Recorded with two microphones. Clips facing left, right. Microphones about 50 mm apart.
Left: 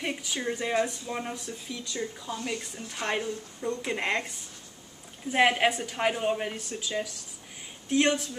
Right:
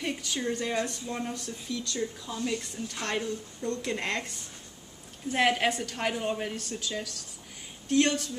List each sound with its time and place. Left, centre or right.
0.0 s speech: centre
5.3 s speech: centre